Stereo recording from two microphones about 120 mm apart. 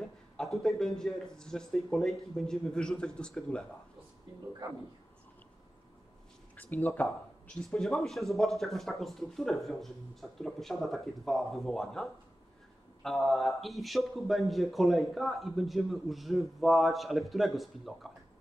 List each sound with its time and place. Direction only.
0.4 s a man's voice: 5° left (ahead or behind)
6.5 s speech: 15° left (ahead or behind)
7.5 s a man's voice: 5° left (ahead or behind)